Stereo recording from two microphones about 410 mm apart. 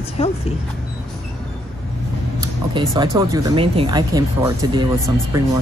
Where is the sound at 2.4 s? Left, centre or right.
Centre.